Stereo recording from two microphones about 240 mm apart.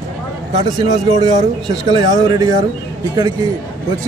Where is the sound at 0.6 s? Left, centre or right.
Centre.